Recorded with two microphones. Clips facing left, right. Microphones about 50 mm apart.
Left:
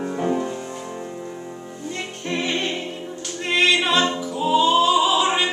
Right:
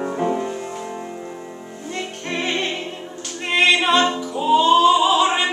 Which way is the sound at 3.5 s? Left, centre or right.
Centre.